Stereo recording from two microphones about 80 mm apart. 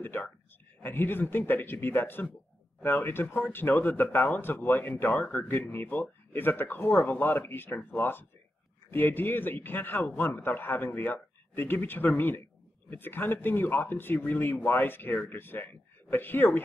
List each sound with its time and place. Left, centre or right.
0.8 s speech: left